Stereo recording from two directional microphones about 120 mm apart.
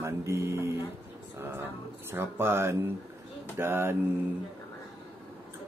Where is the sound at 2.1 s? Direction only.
20° right (ahead or behind).